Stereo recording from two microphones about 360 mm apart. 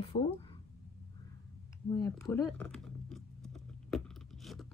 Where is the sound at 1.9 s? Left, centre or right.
Centre.